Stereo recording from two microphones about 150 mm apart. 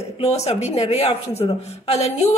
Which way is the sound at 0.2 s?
45° left (ahead or behind).